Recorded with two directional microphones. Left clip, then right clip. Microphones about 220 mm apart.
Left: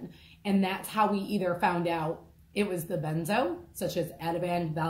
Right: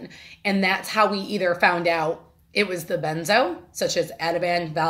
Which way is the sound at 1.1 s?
25° right (ahead or behind).